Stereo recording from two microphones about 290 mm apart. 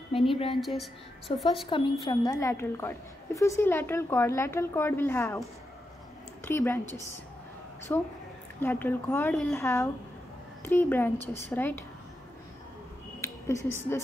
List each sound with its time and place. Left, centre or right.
0.3 s a woman's voice: centre
0.6 s a woman's voice: centre
1.2 s a woman's voice: centre
6.4 s a woman's voice: centre
7.9 s a woman's voice: centre
13.2 s a sound: centre
13.7 s a woman's voice: centre